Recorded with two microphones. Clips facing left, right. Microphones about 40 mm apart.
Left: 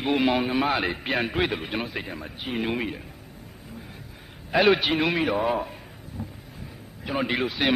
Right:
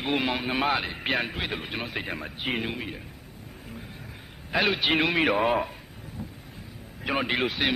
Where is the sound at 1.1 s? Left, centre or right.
Right.